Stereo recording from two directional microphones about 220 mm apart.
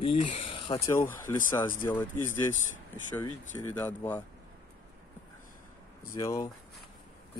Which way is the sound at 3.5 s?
10° left (ahead or behind).